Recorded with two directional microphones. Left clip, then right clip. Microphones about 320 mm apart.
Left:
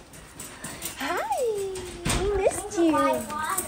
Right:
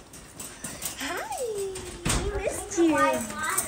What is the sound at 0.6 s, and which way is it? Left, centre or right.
Music, centre.